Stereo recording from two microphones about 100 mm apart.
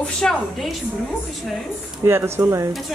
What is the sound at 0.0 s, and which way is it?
Speech, 5° left (ahead or behind).